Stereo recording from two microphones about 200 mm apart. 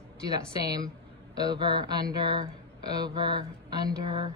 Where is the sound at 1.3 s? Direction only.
20° right (ahead or behind).